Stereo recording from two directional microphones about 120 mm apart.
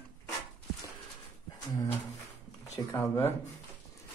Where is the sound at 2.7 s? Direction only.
20° left (ahead or behind).